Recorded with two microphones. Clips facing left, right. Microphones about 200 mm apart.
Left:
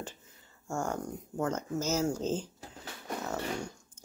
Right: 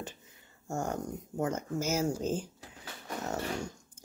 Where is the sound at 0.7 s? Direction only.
20° right (ahead or behind).